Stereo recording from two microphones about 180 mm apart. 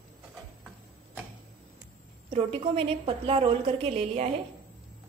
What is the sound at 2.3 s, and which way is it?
A woman's voice, 30° right (ahead or behind).